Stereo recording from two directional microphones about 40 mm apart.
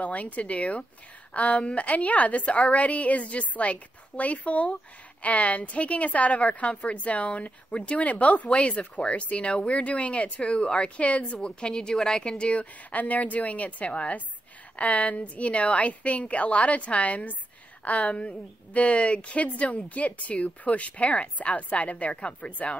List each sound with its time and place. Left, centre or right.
0.0 s a woman's voice: left
11.4 s speech: left
12.9 s a woman's voice: left